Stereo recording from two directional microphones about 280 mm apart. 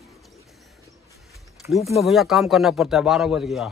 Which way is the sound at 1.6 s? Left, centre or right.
Centre.